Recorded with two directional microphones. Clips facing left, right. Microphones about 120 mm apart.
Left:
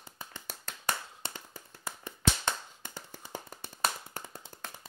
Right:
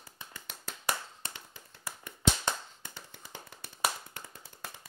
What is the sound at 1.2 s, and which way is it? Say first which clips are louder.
Tap: left 7 dB; 30° left (ahead or behind).